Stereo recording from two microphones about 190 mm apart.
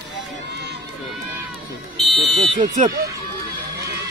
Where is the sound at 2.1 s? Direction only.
25° right (ahead or behind).